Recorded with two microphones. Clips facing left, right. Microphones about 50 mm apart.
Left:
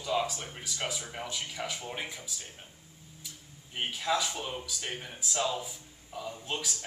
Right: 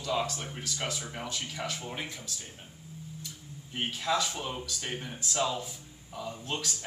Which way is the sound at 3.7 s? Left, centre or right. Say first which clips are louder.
Right 1 dB; centre.